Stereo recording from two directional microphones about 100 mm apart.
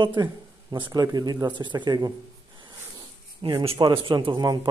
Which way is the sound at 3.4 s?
60° right (ahead or behind).